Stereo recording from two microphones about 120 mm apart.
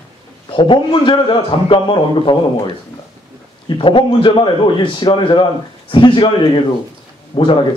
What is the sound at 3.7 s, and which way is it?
A man's voice, 45° left (ahead or behind).